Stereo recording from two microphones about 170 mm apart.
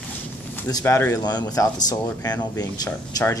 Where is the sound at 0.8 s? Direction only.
15° left (ahead or behind).